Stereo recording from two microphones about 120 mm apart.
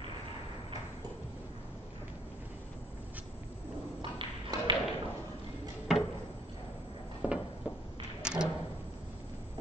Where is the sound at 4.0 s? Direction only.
45° right (ahead or behind).